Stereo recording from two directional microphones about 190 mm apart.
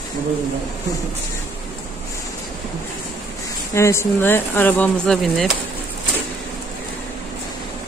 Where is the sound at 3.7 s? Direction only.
15° left (ahead or behind).